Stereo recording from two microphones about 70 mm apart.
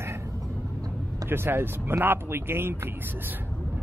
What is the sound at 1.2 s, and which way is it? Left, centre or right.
Speech, right.